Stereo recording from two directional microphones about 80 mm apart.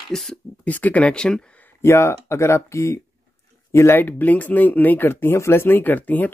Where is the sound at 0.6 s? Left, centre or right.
Centre.